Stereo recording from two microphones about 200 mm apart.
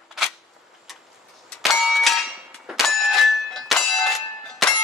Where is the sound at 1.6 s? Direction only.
Centre (ahead or behind).